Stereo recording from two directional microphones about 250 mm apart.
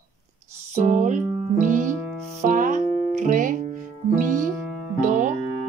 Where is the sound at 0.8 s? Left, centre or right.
Right.